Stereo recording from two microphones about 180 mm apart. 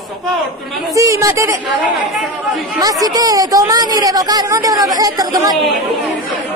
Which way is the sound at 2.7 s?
20° right (ahead or behind).